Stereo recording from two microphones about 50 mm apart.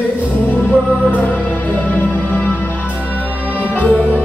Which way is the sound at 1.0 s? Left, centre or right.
Left.